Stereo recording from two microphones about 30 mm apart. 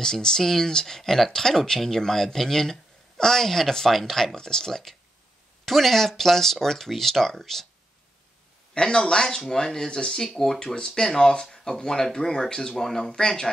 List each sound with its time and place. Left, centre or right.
0.0 s speech: centre
5.7 s speech: centre
8.7 s speech: left
12.7 s speech: centre